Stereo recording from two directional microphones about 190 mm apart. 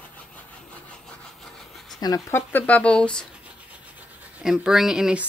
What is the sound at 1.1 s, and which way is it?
Rub, centre (ahead or behind).